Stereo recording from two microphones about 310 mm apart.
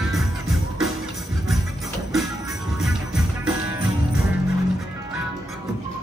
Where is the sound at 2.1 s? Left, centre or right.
Centre.